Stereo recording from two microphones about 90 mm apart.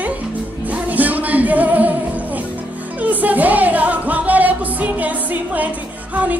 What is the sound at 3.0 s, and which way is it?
Music, 20° right (ahead or behind).